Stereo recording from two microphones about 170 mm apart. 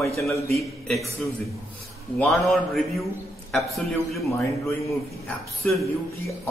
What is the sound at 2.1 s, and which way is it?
A man's voice, centre (ahead or behind).